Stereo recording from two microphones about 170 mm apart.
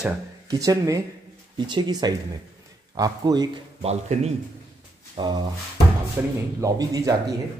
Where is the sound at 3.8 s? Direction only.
40° right (ahead or behind).